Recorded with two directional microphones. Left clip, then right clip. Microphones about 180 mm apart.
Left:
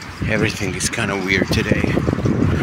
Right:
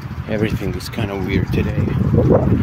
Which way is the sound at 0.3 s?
30° right (ahead or behind).